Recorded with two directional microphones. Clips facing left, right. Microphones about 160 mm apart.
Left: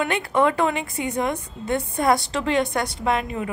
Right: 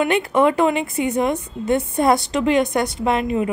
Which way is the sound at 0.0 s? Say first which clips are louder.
Right 4 dB; 20° right (ahead or behind).